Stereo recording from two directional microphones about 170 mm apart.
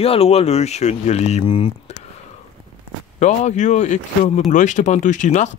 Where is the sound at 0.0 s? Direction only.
35° left (ahead or behind).